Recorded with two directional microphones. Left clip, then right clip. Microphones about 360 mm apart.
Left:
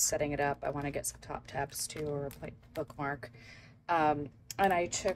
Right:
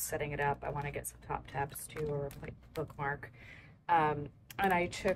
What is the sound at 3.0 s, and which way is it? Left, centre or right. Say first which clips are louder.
Speech: even; centre.